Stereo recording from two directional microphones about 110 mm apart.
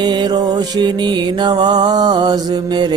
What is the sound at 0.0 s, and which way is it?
Mantra, 40° right (ahead or behind).